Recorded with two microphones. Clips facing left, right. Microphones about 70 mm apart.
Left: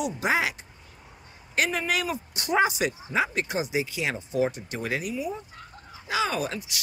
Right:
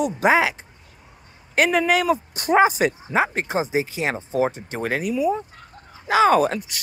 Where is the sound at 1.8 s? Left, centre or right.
Right.